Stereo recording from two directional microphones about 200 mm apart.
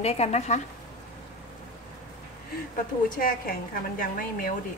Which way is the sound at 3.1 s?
45° left (ahead or behind).